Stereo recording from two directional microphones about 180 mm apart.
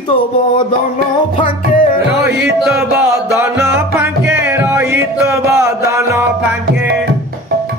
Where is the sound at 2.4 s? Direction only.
5° right (ahead or behind).